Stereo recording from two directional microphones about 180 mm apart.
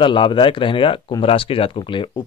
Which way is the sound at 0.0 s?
25° left (ahead or behind).